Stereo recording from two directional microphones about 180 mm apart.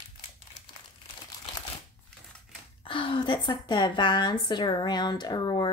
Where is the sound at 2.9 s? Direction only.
30° left (ahead or behind).